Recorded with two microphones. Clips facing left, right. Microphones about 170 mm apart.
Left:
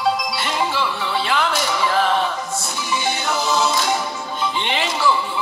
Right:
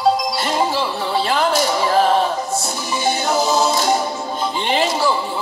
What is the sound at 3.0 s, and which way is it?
Music, 40° right (ahead or behind).